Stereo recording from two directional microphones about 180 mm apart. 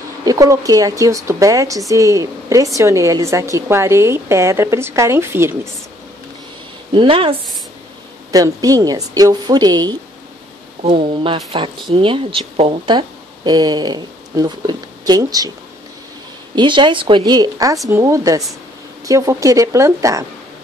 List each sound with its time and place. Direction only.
0.2 s a woman's voice: 20° right (ahead or behind)
6.9 s a woman's voice: 30° right (ahead or behind)
8.3 s a woman's voice: 20° right (ahead or behind)
16.5 s a woman's voice: 25° right (ahead or behind)